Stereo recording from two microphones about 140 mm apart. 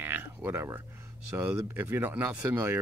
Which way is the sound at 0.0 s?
15° right (ahead or behind).